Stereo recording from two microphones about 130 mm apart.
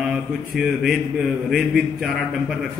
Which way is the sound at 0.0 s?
5° right (ahead or behind).